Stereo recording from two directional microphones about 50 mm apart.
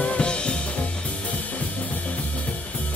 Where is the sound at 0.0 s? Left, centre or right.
Centre.